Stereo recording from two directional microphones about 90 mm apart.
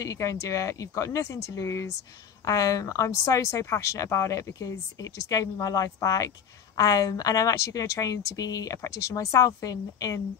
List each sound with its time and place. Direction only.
0.0 s speech: 40° left (ahead or behind)